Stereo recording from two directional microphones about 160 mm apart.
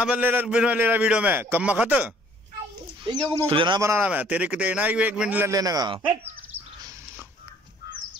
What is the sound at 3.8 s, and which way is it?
A man's voice, 10° right (ahead or behind).